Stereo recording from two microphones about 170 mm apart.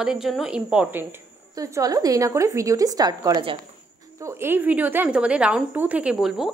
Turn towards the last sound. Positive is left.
turn(degrees=0)  # may be behind; listen again after turning